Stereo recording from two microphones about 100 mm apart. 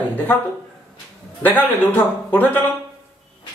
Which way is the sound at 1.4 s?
20° left (ahead or behind).